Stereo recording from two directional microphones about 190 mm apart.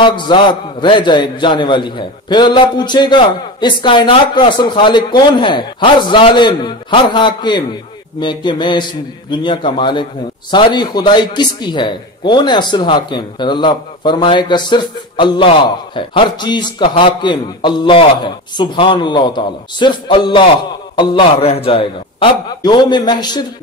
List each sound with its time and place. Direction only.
0.0 s a man's voice: 25° left (ahead or behind)